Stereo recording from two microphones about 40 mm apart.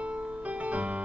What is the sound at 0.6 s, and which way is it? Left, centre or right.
Music, right.